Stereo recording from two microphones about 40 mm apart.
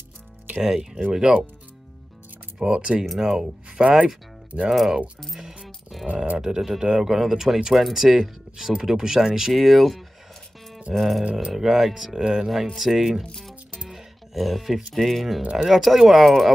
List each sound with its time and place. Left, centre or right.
0.6 s speech: centre
2.6 s speech: right
4.6 s speech: centre
5.4 s music: right
6.3 s speech: centre
13.8 s music: centre
15.0 s speech: centre